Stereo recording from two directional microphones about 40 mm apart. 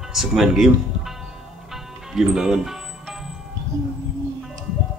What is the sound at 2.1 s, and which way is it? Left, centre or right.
Speech, centre.